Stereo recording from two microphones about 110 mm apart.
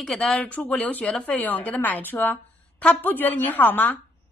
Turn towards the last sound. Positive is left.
turn(degrees=15)  # may be behind; listen again after turning